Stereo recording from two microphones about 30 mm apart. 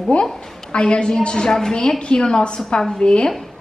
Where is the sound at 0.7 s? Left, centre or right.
Left.